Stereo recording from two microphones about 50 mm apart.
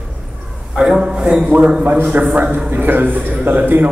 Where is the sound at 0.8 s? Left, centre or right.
Centre.